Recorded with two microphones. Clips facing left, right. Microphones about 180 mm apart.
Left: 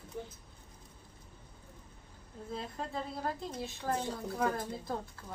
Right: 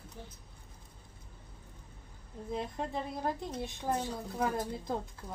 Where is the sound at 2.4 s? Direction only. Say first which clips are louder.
Right 4 dB; 15° right (ahead or behind).